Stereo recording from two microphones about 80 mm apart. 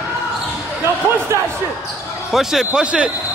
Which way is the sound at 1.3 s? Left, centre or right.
Right.